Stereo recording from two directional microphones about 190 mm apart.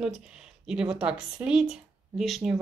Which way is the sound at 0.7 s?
5° right (ahead or behind).